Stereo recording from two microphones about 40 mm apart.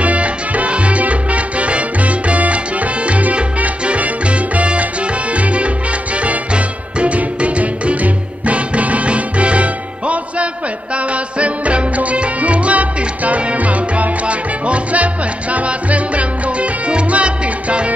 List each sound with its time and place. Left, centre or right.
0.0 s salsa music: right
5.3 s music: right